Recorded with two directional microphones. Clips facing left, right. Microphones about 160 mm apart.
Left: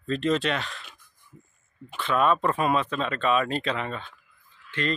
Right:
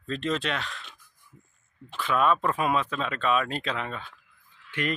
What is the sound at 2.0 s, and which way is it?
A man's voice, centre (ahead or behind).